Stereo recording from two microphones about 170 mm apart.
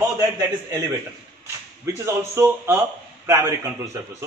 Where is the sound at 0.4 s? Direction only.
25° right (ahead or behind).